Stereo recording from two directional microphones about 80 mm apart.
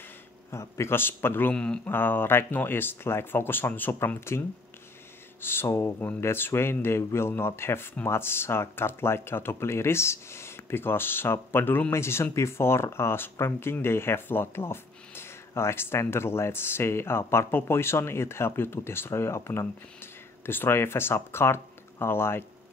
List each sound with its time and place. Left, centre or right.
0.5 s speech: left
1.5 s speech: centre
1.9 s speech: left
5.4 s speech: left